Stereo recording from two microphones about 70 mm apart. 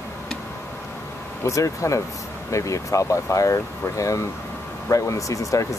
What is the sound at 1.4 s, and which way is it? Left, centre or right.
Speech, left.